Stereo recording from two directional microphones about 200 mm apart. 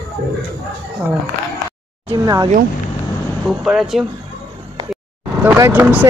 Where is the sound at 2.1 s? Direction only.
20° right (ahead or behind).